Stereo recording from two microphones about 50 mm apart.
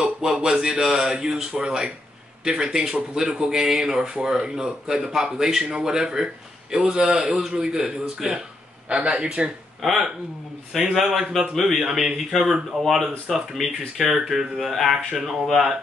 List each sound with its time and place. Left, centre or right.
0.0 s speech: centre
9.8 s speech: centre
13.6 s speech: centre
13.9 s speech: centre